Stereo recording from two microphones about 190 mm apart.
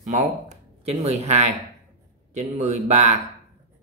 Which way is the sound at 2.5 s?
40° right (ahead or behind).